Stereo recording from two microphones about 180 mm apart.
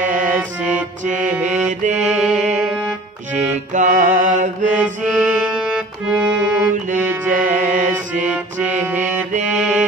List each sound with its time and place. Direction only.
0.0 s music: 45° right (ahead or behind)
1.7 s music: 40° right (ahead or behind)
2.0 s mantra: 5° right (ahead or behind)
2.3 s music: 40° right (ahead or behind)
3.7 s music: 45° right (ahead or behind)
5.1 s music: 5° right (ahead or behind)
7.2 s music: 45° right (ahead or behind)
8.3 s music: 10° right (ahead or behind)